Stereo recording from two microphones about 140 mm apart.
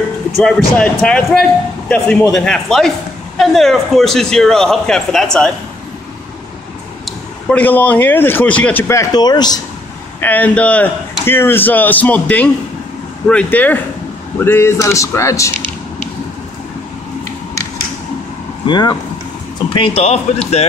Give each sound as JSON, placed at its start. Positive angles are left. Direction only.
{"t": 0.4, "sound": "a man's voice", "side_deg": 5}
{"t": 7.1, "sound": "a man's voice", "side_deg": 10}
{"t": 8.8, "sound": "speech", "side_deg": 25}
{"t": 10.2, "sound": "speech", "side_deg": 10}
{"t": 18.7, "sound": "speech", "side_deg": 30}